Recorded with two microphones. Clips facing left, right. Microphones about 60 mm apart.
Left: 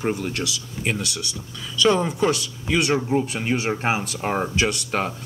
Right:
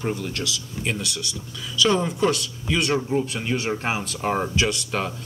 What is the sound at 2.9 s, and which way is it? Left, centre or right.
Speech, left.